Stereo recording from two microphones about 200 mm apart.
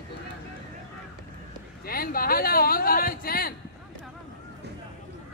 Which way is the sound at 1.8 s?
45° left (ahead or behind).